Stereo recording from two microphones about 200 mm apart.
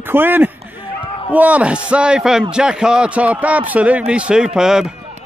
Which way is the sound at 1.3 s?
5° right (ahead or behind).